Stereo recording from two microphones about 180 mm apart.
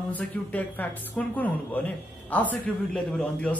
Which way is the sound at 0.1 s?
10° left (ahead or behind).